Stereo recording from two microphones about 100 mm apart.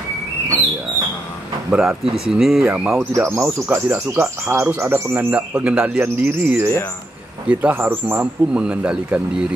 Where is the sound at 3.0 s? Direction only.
25° right (ahead or behind).